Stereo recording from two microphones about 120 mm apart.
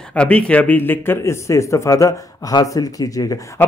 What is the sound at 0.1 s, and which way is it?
Speech, 10° left (ahead or behind).